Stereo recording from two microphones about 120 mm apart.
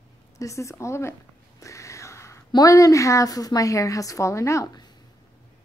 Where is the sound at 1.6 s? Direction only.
25° left (ahead or behind).